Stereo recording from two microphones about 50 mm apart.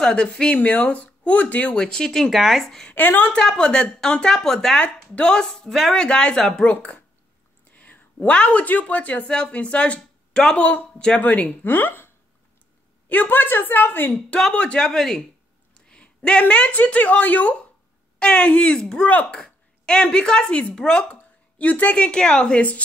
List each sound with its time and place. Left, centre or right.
0.0 s a woman's voice: centre
0.6 s a woman's voice: left
1.8 s speech: centre
2.9 s a woman's voice: left
3.3 s speech: centre
4.7 s speech: left; by 5.9 s centre
5.9 s speech: centre
6.7 s a woman's voice: left
11.1 s a woman's voice: left
13.1 s a woman's voice: left
14.5 s speech: left
15.7 s a sound: centre
16.2 s a woman's voice: left